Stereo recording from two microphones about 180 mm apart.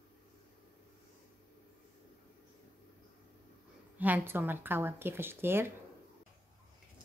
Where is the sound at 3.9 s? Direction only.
10° right (ahead or behind).